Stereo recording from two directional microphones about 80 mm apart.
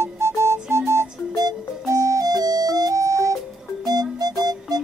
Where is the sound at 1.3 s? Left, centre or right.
Right.